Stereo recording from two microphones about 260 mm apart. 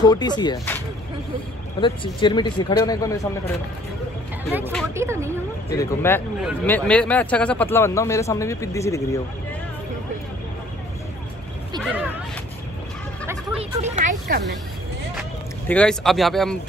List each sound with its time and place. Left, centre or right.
0.0 s speech: centre
4.5 s speech: centre
5.8 s speech: centre
11.8 s a sound: centre
13.6 s speech: right
15.7 s speech: centre